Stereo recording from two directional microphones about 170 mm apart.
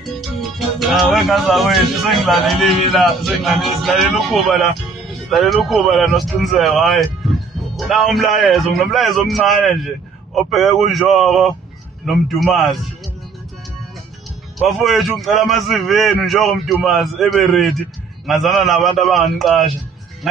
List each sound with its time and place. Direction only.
0.1 s music: centre (ahead or behind)
1.1 s a man's voice: centre (ahead or behind)
7.7 s music: centre (ahead or behind)
8.4 s a man's voice: centre (ahead or behind)
14.8 s a man's voice: centre (ahead or behind)